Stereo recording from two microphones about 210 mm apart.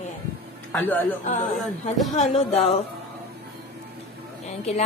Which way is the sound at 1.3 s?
35° left (ahead or behind).